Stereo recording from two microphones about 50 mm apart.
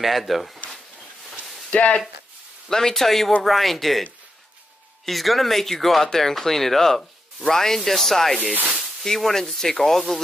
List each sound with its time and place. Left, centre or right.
0.0 s speech: centre
1.7 s speech: left
2.7 s speech: centre
5.0 s speech: centre